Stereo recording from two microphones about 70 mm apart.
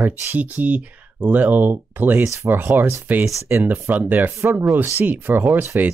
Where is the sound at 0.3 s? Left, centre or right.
Right.